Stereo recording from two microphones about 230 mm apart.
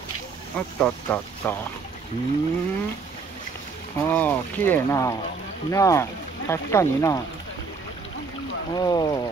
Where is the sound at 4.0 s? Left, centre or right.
Centre.